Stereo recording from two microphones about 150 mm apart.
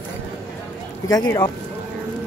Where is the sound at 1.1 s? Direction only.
25° left (ahead or behind).